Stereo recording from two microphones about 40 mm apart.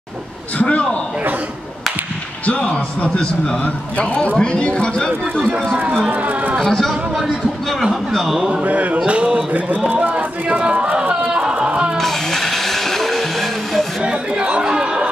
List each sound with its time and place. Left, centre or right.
0.6 s speech: left
2.4 s speech: left
6.0 s speech: right
6.6 s speech: centre
8.1 s a man's voice: centre
8.6 s speech: right
10.0 s music: right
12.0 s vehicle: centre
14.0 s chatter: right